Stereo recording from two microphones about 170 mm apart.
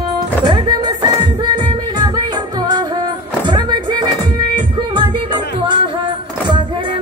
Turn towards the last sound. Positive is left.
turn(degrees=-25)  # may be behind; listen again after turning